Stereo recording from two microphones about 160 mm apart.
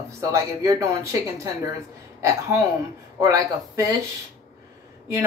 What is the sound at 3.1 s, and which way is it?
Speech, 20° right (ahead or behind).